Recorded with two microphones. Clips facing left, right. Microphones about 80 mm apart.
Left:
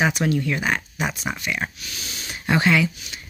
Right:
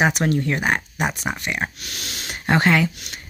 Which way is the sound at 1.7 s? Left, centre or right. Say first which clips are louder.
Right 2 dB; right.